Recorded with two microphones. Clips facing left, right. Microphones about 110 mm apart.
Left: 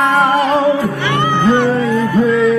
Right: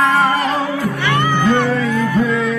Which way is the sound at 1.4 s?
25° left (ahead or behind).